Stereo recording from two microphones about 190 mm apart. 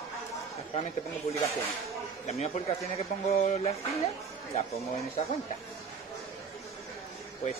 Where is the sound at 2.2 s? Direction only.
35° left (ahead or behind).